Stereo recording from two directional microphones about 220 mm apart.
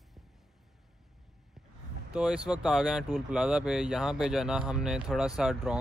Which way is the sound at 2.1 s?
5° right (ahead or behind).